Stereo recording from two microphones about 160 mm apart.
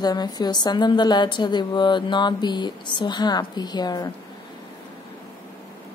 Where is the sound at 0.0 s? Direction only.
25° left (ahead or behind).